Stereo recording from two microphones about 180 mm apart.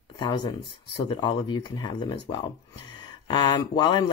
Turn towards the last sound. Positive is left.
turn(degrees=25)  # may be behind; listen again after turning